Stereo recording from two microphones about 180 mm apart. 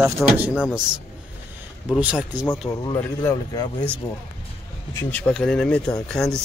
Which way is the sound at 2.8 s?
20° left (ahead or behind).